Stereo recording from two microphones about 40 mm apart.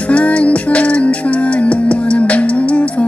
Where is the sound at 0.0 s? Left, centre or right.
Left.